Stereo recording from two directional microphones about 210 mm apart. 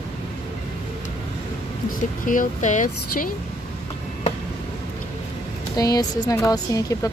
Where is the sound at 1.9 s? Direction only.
40° left (ahead or behind).